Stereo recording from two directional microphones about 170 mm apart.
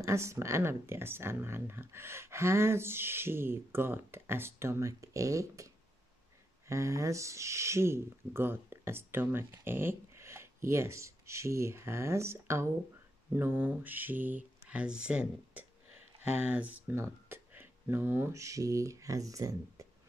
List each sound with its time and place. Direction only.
0.0 s speech: 15° right (ahead or behind)
6.7 s speech: 20° right (ahead or behind)